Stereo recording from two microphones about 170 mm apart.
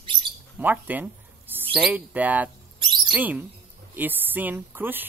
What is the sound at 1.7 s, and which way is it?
Speech, 5° right (ahead or behind).